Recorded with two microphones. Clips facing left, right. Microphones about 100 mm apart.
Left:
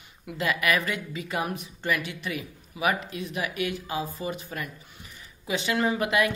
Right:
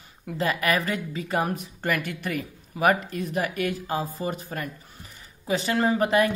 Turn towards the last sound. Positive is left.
turn(degrees=-35)  # may be behind; listen again after turning